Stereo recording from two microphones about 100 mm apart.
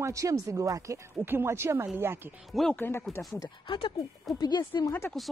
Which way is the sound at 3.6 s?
60° left (ahead or behind).